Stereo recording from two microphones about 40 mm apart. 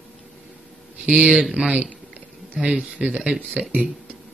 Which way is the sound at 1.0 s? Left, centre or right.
Right.